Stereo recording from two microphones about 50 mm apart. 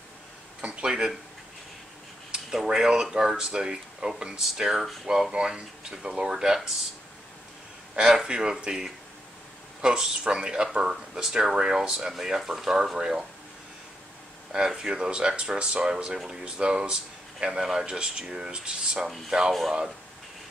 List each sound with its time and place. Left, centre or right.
0.6 s speech: right
2.3 s speech: centre
7.9 s speech: centre
14.5 s speech: centre
19.0 s speech: centre